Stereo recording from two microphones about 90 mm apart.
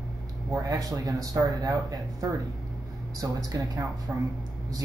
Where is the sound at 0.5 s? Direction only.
40° right (ahead or behind).